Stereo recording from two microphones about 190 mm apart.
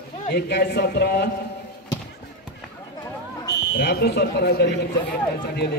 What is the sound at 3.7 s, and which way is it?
Speech, 60° left (ahead or behind).